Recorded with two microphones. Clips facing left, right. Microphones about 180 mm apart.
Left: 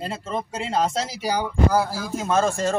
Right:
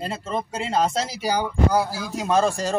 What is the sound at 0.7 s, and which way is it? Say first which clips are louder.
Speech: right 1 dB; 35° right (ahead or behind).